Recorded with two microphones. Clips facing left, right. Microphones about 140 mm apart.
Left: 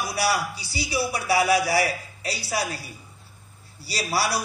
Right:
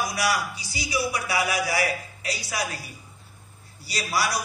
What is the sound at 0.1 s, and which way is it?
A man's voice, 30° left (ahead or behind).